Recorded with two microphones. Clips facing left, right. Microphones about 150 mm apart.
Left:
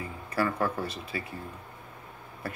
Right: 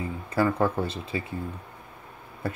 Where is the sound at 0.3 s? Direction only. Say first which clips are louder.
Right 4 dB; 25° right (ahead or behind).